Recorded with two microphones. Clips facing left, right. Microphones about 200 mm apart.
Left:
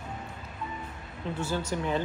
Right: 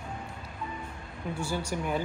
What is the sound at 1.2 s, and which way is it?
Speech, 10° right (ahead or behind).